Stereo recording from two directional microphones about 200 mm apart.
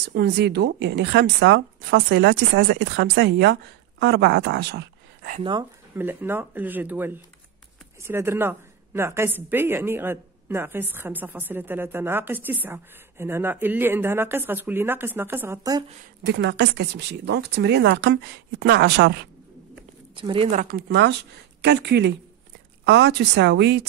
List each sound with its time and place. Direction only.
0.1 s speech: 55° right (ahead or behind)
5.4 s speech: 25° right (ahead or behind)
5.9 s a woman's voice: 10° right (ahead or behind)
16.3 s speech: 60° right (ahead or behind)
20.2 s speech: 25° right (ahead or behind)
20.5 s speech: 55° right (ahead or behind)